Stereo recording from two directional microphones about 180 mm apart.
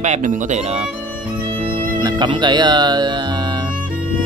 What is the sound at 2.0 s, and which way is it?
Speech, 25° right (ahead or behind).